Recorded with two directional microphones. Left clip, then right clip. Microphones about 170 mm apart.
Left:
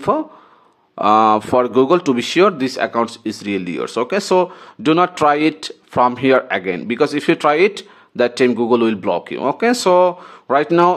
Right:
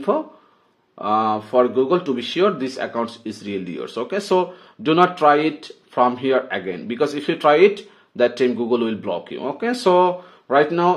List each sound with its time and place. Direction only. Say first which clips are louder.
0.9 s speech: left 7 dB; 40° left (ahead or behind)